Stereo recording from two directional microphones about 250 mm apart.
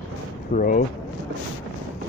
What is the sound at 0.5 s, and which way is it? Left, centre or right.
Speech, left.